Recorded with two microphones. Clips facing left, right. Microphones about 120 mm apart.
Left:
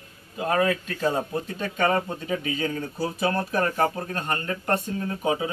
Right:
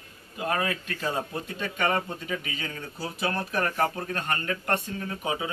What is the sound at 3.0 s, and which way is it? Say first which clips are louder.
Speech: left 4 dB; 20° left (ahead or behind).